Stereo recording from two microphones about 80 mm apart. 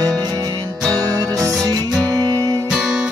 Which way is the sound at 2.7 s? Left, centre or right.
Centre.